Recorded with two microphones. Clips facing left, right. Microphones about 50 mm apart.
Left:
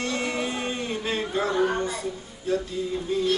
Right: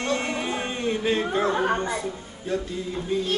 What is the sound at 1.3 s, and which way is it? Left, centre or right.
Chatter, right.